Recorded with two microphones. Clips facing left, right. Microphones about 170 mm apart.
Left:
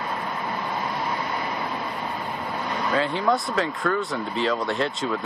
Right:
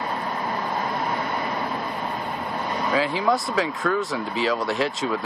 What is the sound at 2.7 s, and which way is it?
Speech, centre (ahead or behind).